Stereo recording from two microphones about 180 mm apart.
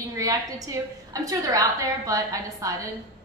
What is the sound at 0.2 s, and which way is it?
A woman's voice, 20° right (ahead or behind).